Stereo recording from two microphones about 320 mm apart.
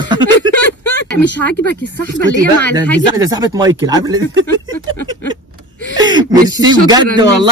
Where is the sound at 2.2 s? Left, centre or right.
Left.